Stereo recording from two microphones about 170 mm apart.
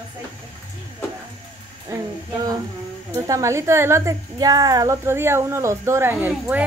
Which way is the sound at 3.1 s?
20° right (ahead or behind).